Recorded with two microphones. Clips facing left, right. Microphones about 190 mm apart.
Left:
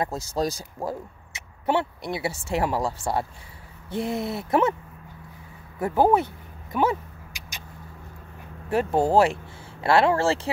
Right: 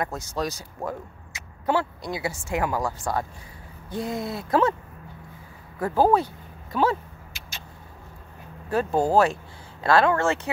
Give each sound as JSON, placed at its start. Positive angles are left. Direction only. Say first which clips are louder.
{"t": 0.0, "sound": "speech", "louder": "left 2 dB", "side_deg": 30}
{"t": 5.8, "sound": "a sound", "louder": "even", "side_deg": 20}
{"t": 8.6, "sound": "speech", "louder": "left 1 dB", "side_deg": 25}